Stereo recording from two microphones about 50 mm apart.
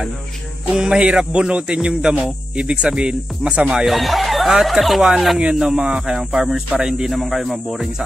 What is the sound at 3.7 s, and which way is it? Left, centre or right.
Speech, centre.